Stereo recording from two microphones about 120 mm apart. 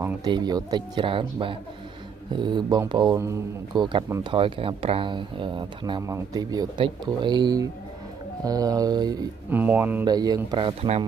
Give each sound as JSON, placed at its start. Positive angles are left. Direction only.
{"t": 0.2, "sound": "speech", "side_deg": -35}
{"t": 6.0, "sound": "speech", "side_deg": -30}
{"t": 9.5, "sound": "speech", "side_deg": -15}
{"t": 10.0, "sound": "speech", "side_deg": -35}
{"t": 10.6, "sound": "speech", "side_deg": -50}